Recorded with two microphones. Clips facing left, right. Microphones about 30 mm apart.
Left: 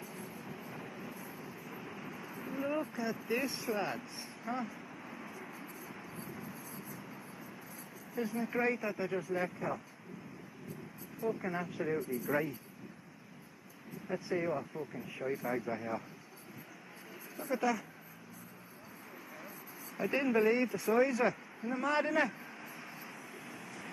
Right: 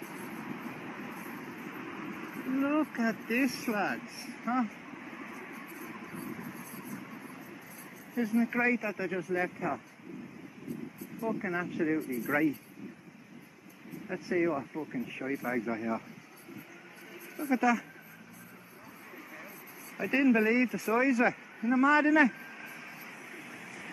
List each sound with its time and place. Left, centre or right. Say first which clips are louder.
0.0 s vehicle: right 5 dB; centre
0.7 s train: right 4 dB; centre
2.9 s speech: right 4 dB; centre
5.1 s vehicle: right 3 dB; centre
8.1 s speech: right 7 dB; centre
8.5 s speech: right 4 dB; centre
11.3 s speech: right 5 dB; centre
14.0 s speech: right 5 dB; centre
17.4 s speech: right 6 dB; centre
20.0 s a man's voice: right 4 dB; centre
23.5 s vehicle: right 2 dB; centre